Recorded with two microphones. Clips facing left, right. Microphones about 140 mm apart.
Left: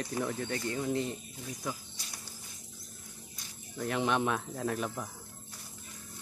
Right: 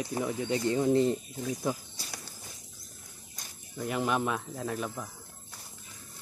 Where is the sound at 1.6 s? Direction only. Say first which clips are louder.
Right 6 dB; 30° right (ahead or behind).